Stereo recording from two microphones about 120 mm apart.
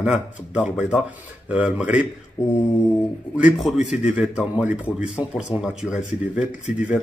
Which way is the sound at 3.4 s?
10° right (ahead or behind).